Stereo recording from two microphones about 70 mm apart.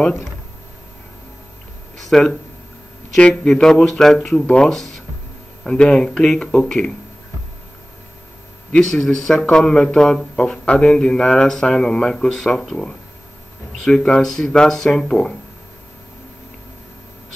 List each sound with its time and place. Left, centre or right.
2.0 s a sound: centre
3.2 s speech: centre
8.7 s speech: centre
13.8 s speech: centre